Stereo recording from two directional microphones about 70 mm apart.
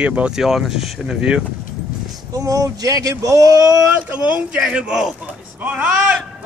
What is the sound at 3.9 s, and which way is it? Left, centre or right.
Speech, right.